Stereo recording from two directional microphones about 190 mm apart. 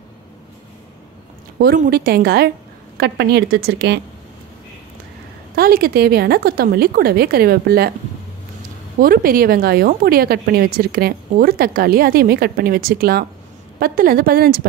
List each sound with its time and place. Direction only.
1.6 s a woman's voice: 55° right (ahead or behind)
5.6 s speech: 50° right (ahead or behind)
9.0 s speech: 50° right (ahead or behind)